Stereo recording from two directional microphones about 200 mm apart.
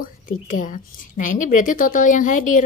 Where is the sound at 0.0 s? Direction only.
40° left (ahead or behind).